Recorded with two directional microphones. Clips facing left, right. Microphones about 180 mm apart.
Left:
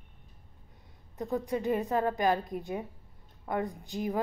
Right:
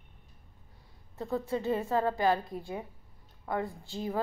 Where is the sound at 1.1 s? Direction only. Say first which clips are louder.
Left 1 dB; 15° left (ahead or behind).